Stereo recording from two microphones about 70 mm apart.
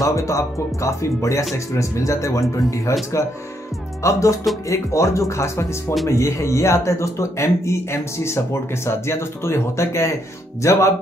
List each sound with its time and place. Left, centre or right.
0.0 s a man's voice: left
4.0 s a man's voice: left